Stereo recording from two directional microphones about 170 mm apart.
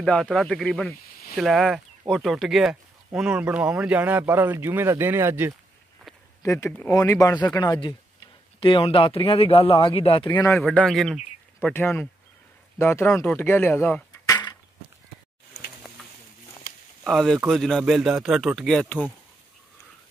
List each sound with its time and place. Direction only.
0.0 s a man's voice: 5° left (ahead or behind); by 5.5 s 15° right (ahead or behind)
6.4 s a man's voice: 15° left (ahead or behind)
10.6 s a man's voice: 5° left (ahead or behind)
11.6 s speech: 15° left (ahead or behind)
14.2 s a sound: 20° left (ahead or behind)
17.0 s a man's voice: centre (ahead or behind)